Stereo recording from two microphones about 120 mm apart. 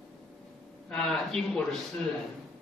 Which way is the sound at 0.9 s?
5° left (ahead or behind).